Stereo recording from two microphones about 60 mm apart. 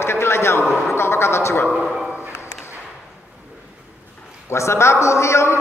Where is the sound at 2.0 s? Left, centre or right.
Right.